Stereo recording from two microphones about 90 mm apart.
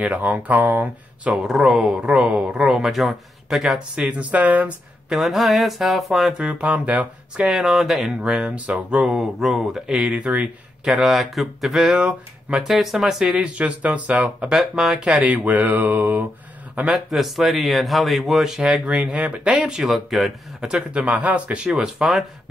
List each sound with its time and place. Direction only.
0.0 s speech: 15° right (ahead or behind)
1.3 s speech: 5° right (ahead or behind)
5.1 s speech: centre (ahead or behind); by 7.4 s 15° right (ahead or behind)
7.4 s speech: 5° right (ahead or behind)
10.9 s speech: centre (ahead or behind)
14.5 s a man's voice: 5° right (ahead or behind)
17.1 s speech: centre (ahead or behind)